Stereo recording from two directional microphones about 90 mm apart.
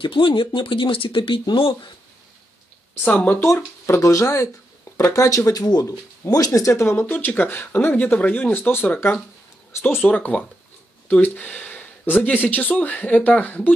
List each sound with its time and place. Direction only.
0.0 s speech: 70° left (ahead or behind)
2.9 s speech: 20° left (ahead or behind)
3.8 s speech: 35° left (ahead or behind); by 13.6 s 15° left (ahead or behind)